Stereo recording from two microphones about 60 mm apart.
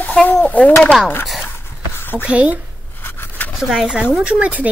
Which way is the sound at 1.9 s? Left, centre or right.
Left.